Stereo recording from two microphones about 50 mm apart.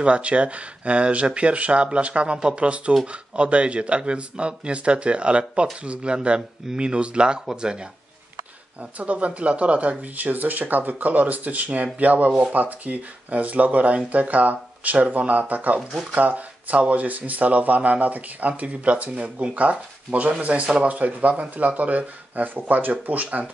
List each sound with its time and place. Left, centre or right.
0.0 s speech: right
8.9 s speech: right